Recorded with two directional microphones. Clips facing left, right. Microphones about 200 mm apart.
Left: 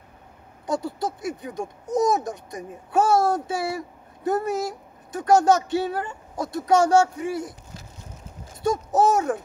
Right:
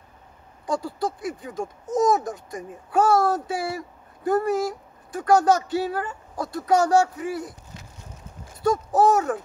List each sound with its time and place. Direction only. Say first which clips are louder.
0.7 s speech: even; 25° left (ahead or behind)